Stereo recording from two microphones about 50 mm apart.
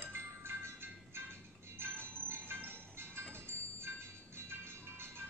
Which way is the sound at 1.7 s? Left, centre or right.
Right.